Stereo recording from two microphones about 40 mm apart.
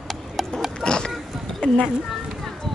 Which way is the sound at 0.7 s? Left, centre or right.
Left.